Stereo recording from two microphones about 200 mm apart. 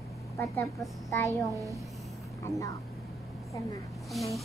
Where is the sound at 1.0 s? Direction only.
15° left (ahead or behind).